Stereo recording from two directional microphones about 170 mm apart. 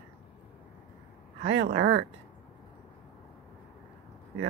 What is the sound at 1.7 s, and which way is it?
Speech, 90° right.